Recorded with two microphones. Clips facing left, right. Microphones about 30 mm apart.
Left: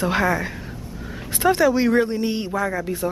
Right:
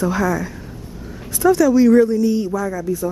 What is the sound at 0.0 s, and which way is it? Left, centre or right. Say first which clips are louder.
A man's voice: right 1 dB; left.